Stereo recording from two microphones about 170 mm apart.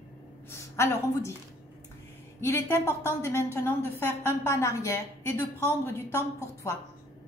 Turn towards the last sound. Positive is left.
turn(degrees=15)  # may be behind; listen again after turning